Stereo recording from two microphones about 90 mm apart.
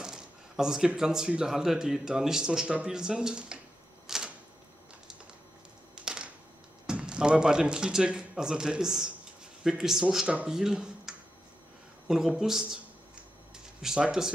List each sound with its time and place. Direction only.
0.0 s speech: 5° right (ahead or behind)
4.1 s typewriter: 5° right (ahead or behind)
5.9 s a sound: 10° right (ahead or behind)
6.9 s speech: 10° right (ahead or behind)
13.7 s speech: 10° right (ahead or behind)